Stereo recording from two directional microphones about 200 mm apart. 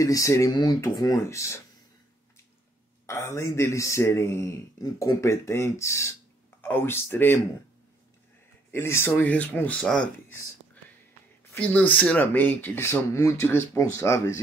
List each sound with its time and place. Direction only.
0.0 s a man's voice: 15° left (ahead or behind)
3.1 s a man's voice: 15° left (ahead or behind)
8.7 s a man's voice: 10° left (ahead or behind)
11.5 s a man's voice: 10° left (ahead or behind)